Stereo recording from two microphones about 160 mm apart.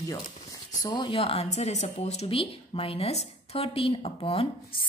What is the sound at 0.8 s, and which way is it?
Speech, 30° left (ahead or behind).